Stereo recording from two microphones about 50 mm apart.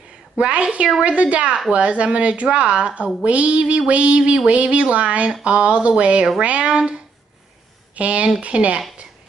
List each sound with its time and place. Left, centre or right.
0.4 s speech: right